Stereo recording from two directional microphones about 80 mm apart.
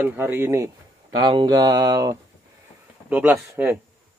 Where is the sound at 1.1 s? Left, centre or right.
Right.